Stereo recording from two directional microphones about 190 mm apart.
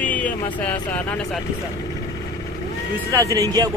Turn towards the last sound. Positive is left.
turn(degrees=-15)  # may be behind; listen again after turning